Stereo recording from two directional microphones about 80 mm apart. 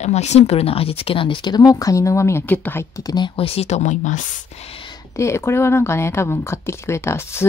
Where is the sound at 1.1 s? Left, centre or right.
Left.